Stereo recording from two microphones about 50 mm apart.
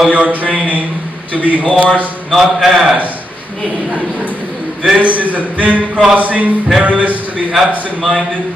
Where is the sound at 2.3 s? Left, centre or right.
Centre.